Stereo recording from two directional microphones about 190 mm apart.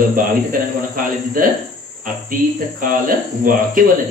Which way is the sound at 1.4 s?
45° right (ahead or behind).